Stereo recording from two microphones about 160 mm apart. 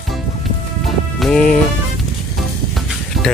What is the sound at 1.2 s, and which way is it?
Speech, 5° left (ahead or behind).